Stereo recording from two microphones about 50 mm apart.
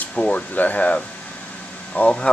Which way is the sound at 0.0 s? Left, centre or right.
Left.